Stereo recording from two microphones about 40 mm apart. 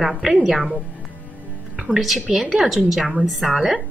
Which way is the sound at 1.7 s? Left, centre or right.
Centre.